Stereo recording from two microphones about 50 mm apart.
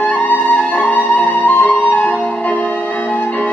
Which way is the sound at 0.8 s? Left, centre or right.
Left.